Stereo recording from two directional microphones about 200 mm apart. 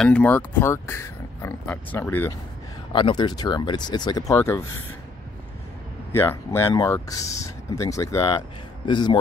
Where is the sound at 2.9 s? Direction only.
25° left (ahead or behind).